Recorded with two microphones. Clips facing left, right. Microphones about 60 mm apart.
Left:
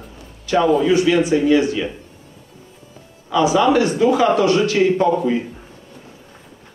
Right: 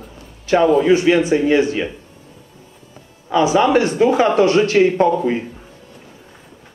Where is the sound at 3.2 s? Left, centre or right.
Right.